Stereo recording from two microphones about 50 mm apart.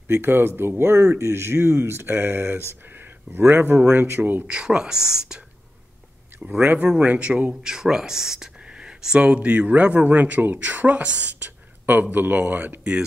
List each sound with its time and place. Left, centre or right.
0.1 s speech: right
4.5 s speech: centre
6.6 s speech: right
7.0 s speech: right